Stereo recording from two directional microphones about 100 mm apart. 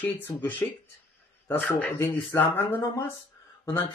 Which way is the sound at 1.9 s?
25° left (ahead or behind).